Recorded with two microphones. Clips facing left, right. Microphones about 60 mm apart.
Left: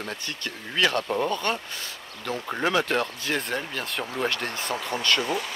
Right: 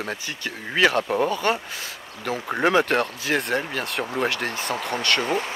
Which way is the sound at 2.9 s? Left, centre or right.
Centre.